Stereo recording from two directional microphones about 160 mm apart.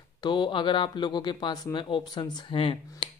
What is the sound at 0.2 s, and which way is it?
A man's voice, 30° left (ahead or behind).